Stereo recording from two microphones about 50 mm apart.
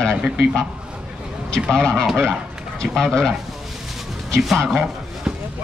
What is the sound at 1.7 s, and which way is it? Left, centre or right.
Speech, centre.